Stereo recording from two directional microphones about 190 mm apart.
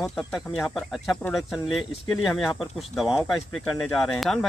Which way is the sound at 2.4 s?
20° left (ahead or behind).